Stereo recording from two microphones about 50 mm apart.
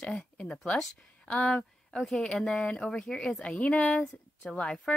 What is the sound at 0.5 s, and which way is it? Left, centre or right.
A woman's voice, centre.